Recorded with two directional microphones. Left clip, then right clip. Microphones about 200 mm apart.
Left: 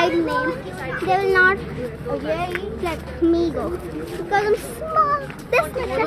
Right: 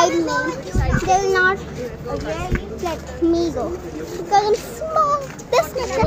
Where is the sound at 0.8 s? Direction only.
50° right (ahead or behind).